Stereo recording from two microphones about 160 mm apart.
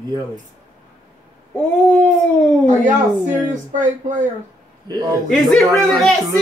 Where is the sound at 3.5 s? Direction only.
50° right (ahead or behind).